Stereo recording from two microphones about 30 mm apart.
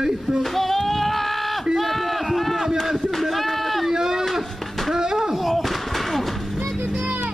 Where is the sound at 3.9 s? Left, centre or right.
Centre.